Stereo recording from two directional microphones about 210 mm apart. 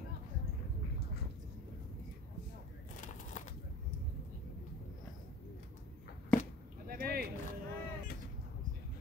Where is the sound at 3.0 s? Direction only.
35° left (ahead or behind).